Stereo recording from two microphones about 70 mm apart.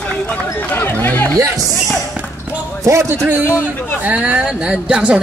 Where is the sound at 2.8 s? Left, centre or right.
Right.